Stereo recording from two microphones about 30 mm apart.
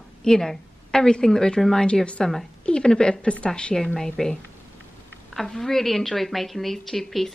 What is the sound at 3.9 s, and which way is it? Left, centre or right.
Speech, centre.